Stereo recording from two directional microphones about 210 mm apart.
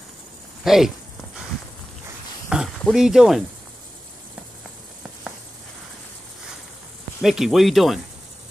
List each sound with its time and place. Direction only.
0.7 s speech: centre (ahead or behind)
2.5 s speech: centre (ahead or behind)
7.2 s speech: centre (ahead or behind)